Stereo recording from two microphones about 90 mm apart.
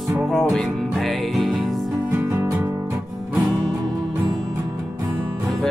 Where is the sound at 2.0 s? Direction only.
25° right (ahead or behind).